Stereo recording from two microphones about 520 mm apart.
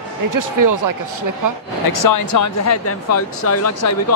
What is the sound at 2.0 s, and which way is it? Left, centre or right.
Speech, left.